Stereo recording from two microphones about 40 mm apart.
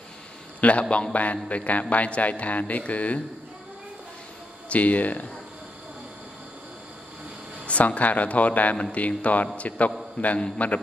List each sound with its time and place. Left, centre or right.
0.6 s a man's voice: left
4.6 s a man's voice: left
7.6 s a man's voice: left